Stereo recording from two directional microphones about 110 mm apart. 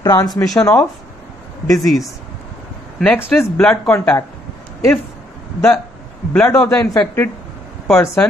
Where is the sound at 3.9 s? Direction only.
20° left (ahead or behind).